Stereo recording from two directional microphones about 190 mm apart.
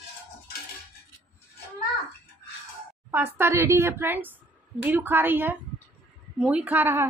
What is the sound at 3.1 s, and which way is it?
A woman's voice, 10° right (ahead or behind).